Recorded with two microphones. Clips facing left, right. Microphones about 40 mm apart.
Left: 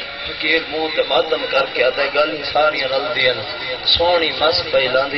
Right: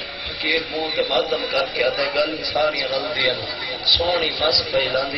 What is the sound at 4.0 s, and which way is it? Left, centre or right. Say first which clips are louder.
Speech: left 8 dB; centre.